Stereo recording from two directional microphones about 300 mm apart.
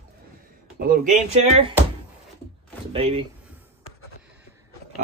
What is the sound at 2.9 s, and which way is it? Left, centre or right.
Speech, centre.